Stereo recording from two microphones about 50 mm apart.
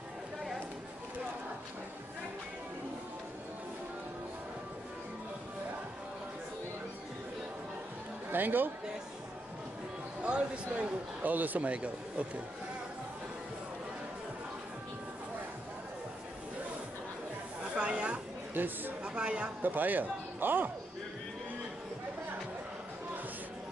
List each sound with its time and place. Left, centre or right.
8.3 s a man's voice: right
10.2 s speech: right
11.2 s speech: right
17.7 s a sound: right
18.5 s a sound: right
19.0 s speech: right
19.6 s speech: right